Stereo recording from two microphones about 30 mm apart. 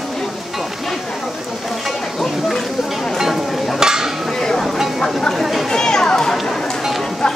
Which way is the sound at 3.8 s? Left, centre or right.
Centre.